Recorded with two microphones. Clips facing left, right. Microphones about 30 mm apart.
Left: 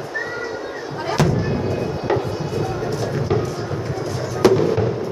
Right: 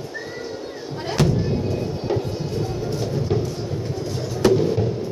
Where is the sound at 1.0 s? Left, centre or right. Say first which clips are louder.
Left 2 dB; centre.